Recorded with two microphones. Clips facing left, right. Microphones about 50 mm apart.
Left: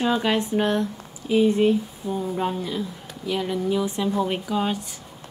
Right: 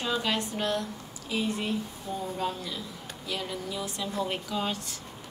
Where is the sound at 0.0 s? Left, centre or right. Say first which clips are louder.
Left 7 dB; left.